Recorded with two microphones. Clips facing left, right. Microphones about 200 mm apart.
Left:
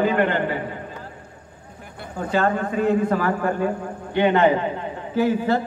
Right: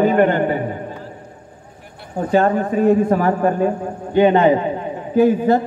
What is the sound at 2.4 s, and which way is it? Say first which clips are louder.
A man's voice: right 5 dB; 30° right (ahead or behind).